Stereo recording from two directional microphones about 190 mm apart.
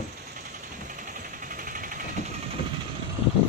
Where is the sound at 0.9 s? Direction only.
45° right (ahead or behind).